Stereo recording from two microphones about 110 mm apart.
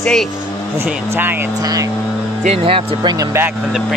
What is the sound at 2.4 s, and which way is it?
Speech, 60° right (ahead or behind).